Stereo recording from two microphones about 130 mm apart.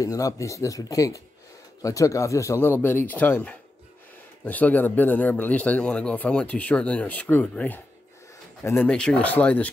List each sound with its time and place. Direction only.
0.0 s a man's voice: 25° left (ahead or behind); by 9.7 s 10° left (ahead or behind)